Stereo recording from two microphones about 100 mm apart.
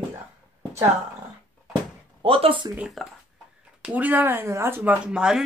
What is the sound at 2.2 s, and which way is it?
Speech, 65° right (ahead or behind).